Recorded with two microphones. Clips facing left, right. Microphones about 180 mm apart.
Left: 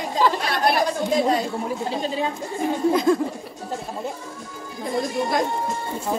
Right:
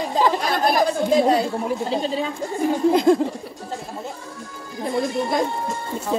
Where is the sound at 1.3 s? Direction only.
35° right (ahead or behind).